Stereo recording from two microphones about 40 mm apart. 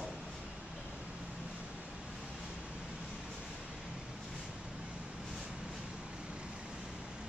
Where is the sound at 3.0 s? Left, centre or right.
Centre.